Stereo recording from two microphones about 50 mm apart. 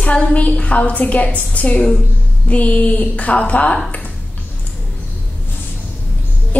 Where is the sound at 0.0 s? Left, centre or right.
Left.